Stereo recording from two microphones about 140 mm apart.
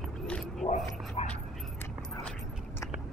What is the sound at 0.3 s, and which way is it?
Dog, centre (ahead or behind).